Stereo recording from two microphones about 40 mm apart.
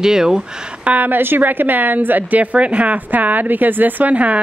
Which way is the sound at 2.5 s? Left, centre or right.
Right.